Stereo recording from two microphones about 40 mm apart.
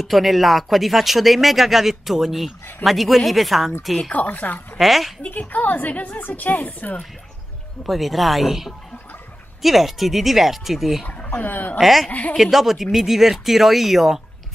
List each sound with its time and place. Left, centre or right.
0.0 s speech: centre
4.1 s a woman's voice: left
4.7 s speech: centre
5.3 s a woman's voice: left
7.9 s speech: centre
11.1 s a woman's voice: left
11.8 s speech: centre
12.1 s speech: left
12.4 s speech: centre